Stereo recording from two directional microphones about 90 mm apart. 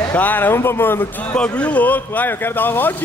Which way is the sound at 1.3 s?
10° left (ahead or behind).